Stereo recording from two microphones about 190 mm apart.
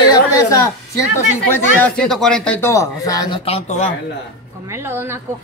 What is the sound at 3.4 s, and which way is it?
Speech, 30° left (ahead or behind).